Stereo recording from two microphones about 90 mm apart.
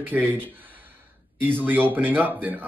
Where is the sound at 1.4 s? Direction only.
20° right (ahead or behind).